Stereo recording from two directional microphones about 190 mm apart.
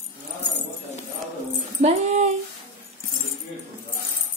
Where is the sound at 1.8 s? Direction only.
40° right (ahead or behind).